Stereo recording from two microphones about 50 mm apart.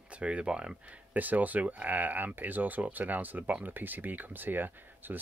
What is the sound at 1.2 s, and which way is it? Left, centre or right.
Speech, right.